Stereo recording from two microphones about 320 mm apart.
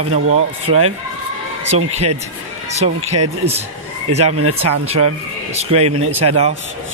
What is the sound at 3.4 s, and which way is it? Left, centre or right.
Speech, right.